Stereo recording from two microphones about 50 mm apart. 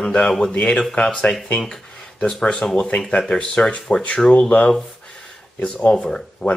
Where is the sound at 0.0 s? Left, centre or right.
Centre.